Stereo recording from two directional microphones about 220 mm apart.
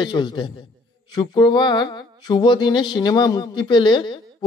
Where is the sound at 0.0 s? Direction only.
20° left (ahead or behind).